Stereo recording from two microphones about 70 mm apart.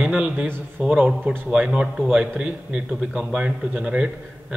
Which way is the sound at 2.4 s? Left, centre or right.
Centre.